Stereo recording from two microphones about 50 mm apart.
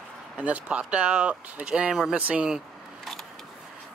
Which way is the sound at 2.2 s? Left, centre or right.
Right.